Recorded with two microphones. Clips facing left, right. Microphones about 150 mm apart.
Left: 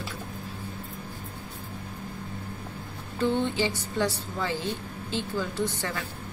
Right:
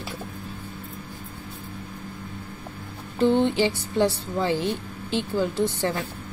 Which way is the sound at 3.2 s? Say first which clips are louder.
Right 6 dB; 20° right (ahead or behind).